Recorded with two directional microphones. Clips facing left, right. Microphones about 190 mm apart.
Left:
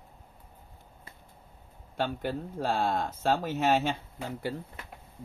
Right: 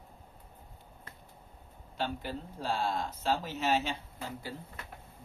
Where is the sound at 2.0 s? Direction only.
55° left (ahead or behind).